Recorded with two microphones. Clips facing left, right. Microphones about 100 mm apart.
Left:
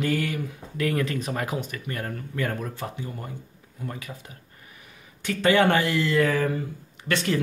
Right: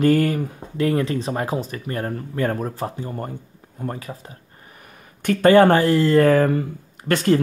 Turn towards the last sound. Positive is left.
turn(degrees=-45)  # may be behind; listen again after turning